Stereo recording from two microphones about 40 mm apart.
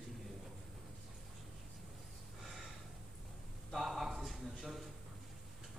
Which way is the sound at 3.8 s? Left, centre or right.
Centre.